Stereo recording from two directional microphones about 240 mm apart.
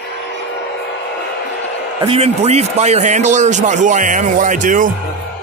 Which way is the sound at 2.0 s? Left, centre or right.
Right.